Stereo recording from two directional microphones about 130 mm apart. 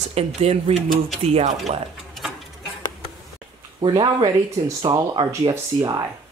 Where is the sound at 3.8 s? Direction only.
35° right (ahead or behind).